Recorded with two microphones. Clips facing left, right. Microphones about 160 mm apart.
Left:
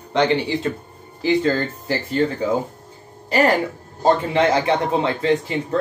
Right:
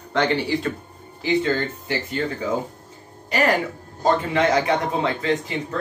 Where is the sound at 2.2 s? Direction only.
35° left (ahead or behind).